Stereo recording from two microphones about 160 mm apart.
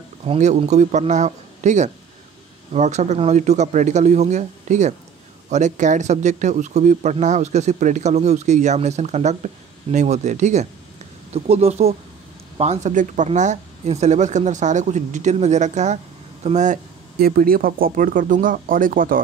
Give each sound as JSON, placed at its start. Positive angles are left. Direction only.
{"t": 0.2, "sound": "speech", "side_deg": -45}